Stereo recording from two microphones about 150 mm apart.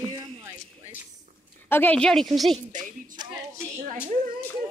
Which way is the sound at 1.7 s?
10° left (ahead or behind).